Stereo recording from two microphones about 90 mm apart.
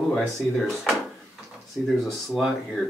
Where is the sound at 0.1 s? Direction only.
5° left (ahead or behind).